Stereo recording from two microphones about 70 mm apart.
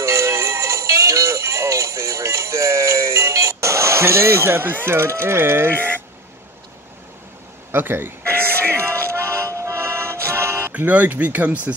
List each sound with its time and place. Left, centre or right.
0.0 s music: right
4.8 s speech: right
7.7 s music: right
10.7 s speech: right